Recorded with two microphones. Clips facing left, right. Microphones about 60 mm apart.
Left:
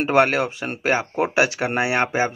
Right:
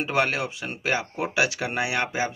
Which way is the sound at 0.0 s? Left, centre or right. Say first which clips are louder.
Left 7 dB; left.